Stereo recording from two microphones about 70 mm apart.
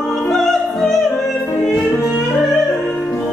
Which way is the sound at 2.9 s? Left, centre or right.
Left.